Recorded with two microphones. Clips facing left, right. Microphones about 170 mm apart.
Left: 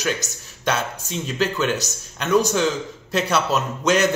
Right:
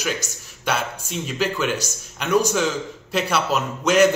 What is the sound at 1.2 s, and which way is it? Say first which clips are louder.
A man's voice: left 1 dB; 10° right (ahead or behind).